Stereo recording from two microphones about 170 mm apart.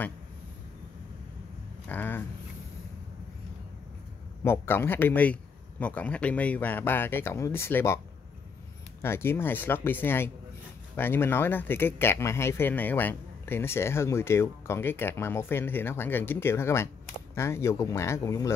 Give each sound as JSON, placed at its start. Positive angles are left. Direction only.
{"t": 1.9, "sound": "speech", "side_deg": 10}
{"t": 4.5, "sound": "speech", "side_deg": 15}
{"t": 9.0, "sound": "speech", "side_deg": 15}